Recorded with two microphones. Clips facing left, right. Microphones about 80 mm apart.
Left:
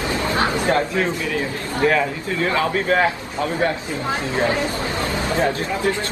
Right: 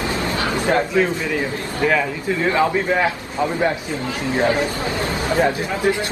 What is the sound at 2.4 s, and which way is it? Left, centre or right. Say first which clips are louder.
A man's voice: right 2 dB; right.